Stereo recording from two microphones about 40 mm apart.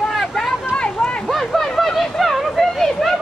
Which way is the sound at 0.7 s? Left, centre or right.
Left.